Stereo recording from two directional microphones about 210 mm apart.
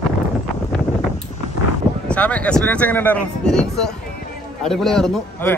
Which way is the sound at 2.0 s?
5° left (ahead or behind).